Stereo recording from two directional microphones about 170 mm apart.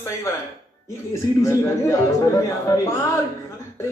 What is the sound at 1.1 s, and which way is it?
A man's voice, 15° left (ahead or behind).